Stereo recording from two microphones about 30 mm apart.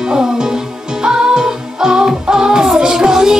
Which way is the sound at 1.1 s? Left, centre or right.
Right.